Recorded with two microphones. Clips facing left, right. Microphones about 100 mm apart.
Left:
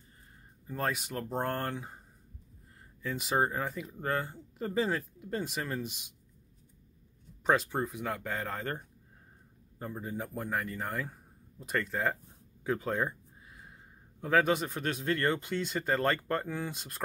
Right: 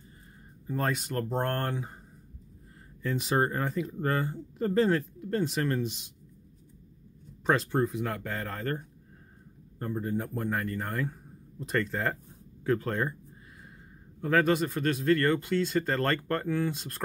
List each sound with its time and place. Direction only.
0.7 s speech: centre (ahead or behind)
3.0 s speech: 5° left (ahead or behind)
7.4 s speech: 5° left (ahead or behind)
14.2 s speech: 10° left (ahead or behind)